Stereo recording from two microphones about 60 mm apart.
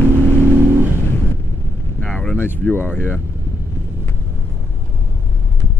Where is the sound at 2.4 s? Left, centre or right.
Left.